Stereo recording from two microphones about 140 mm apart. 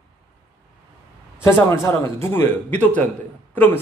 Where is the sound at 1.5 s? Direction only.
15° left (ahead or behind).